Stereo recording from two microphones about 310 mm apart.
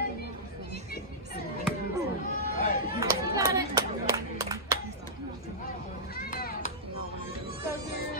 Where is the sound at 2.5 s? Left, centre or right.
Left.